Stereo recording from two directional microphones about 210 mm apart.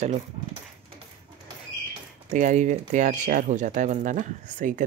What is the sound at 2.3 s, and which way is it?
Speech, 35° right (ahead or behind).